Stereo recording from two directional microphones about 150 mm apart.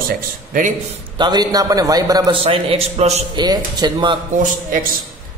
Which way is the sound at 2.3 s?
40° right (ahead or behind).